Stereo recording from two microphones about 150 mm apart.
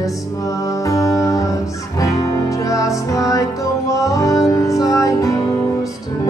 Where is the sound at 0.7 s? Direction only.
20° left (ahead or behind).